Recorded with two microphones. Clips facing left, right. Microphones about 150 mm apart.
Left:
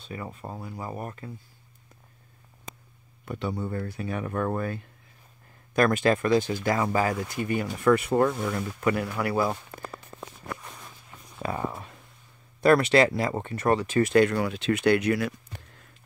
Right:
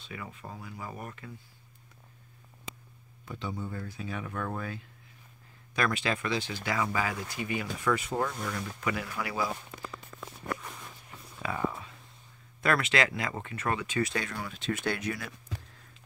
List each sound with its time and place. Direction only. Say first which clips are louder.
0.0 s speech: left 5 dB; 40° left (ahead or behind)
3.3 s speech: left 6 dB; 60° left (ahead or behind)
10.1 s walk: left 4 dB; 35° left (ahead or behind)
11.4 s a sound: left 2 dB; 40° left (ahead or behind)
12.6 s speech: left 8 dB; 35° left (ahead or behind)
14.1 s speech: left 14 dB; 70° left (ahead or behind)